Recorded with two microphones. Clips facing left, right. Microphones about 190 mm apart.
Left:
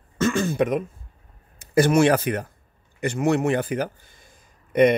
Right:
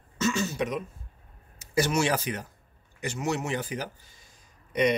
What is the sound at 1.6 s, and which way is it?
Speech, 55° left (ahead or behind).